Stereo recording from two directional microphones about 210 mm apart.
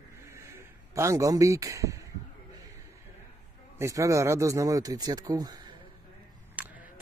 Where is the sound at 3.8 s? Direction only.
15° right (ahead or behind).